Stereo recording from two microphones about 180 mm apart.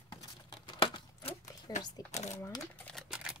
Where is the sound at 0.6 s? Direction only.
25° left (ahead or behind).